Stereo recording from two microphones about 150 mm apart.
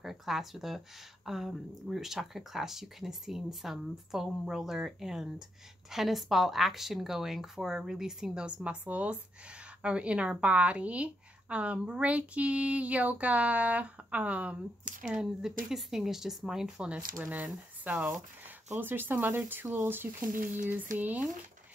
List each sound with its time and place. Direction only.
0.0 s a woman's voice: centre (ahead or behind)
20.3 s speech: 60° right (ahead or behind)
21.0 s a woman's voice: 10° right (ahead or behind)